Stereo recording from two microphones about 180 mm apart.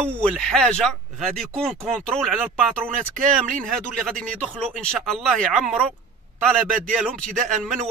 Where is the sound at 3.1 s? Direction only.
45° right (ahead or behind).